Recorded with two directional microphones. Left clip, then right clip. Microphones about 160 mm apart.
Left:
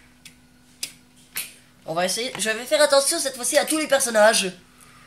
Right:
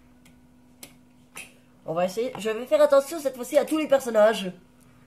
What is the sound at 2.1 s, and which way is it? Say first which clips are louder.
Speech: left 2 dB; 45° right (ahead or behind).